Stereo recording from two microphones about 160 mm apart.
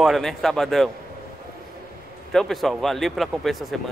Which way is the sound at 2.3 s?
Centre (ahead or behind).